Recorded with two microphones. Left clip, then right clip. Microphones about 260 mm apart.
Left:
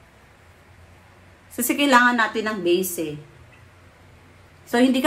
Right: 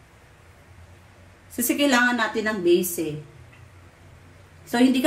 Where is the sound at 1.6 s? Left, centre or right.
Centre.